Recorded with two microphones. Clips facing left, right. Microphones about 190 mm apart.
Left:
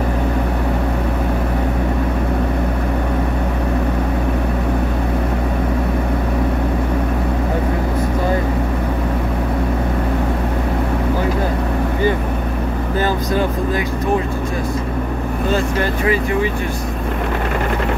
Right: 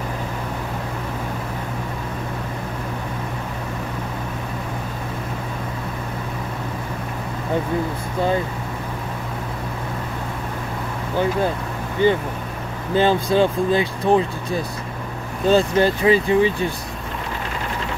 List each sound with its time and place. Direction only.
12.9 s vehicle: 25° right (ahead or behind)
15.5 s speech: 30° right (ahead or behind)